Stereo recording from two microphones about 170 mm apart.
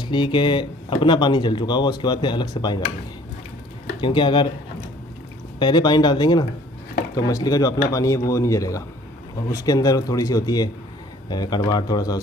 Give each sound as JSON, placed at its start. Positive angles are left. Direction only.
{"t": 0.0, "sound": "speech", "side_deg": 30}
{"t": 4.0, "sound": "speech", "side_deg": 30}
{"t": 5.6, "sound": "speech", "side_deg": 25}